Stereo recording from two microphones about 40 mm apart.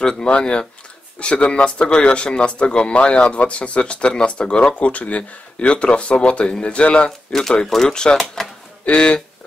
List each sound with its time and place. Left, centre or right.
0.0 s speech: centre
7.3 s speech: centre
7.9 s speech: centre